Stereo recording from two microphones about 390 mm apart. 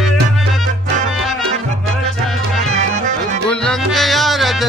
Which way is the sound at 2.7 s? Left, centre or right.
Centre.